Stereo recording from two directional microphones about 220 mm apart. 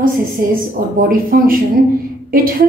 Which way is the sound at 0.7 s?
40° right (ahead or behind).